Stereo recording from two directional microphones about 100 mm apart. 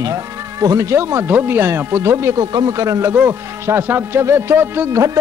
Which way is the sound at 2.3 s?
40° right (ahead or behind).